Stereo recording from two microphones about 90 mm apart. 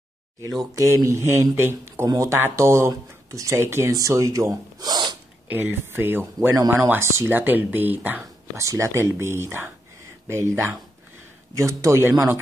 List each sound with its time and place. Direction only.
0.7 s speech: 35° right (ahead or behind)
3.9 s speech: 40° right (ahead or behind)
5.5 s speech: 25° right (ahead or behind)
8.2 s speech: 35° right (ahead or behind)